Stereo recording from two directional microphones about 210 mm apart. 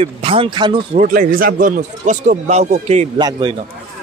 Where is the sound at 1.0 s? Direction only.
40° right (ahead or behind).